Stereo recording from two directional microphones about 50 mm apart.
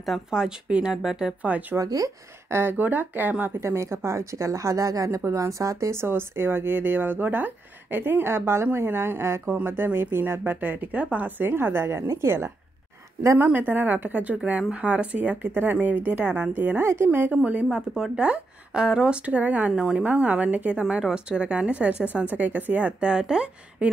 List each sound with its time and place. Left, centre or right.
0.3 s speech: centre
1.4 s speech: right
2.5 s speech: right
3.6 s a woman's voice: right
13.4 s speech: right
15.4 s speech: right
16.8 s speech: right
17.3 s speech: right
17.6 s speech: centre
18.1 s speech: right
19.7 s speech: centre
20.1 s speech: right
21.1 s speech: centre